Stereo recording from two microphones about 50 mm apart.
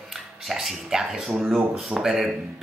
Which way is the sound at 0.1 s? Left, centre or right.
Centre.